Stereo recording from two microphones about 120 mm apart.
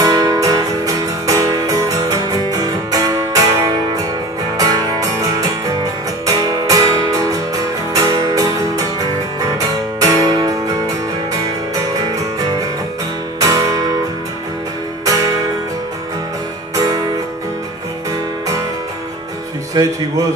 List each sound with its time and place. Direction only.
0.0 s music: 30° right (ahead or behind)
9.9 s music: 30° right (ahead or behind)
15.0 s music: 30° right (ahead or behind)
16.7 s music: 30° right (ahead or behind)
19.7 s speech: 30° right (ahead or behind)